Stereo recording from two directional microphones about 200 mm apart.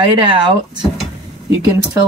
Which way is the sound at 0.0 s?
25° right (ahead or behind).